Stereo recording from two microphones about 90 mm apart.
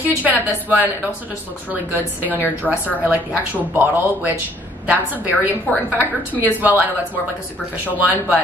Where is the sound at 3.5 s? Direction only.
20° right (ahead or behind).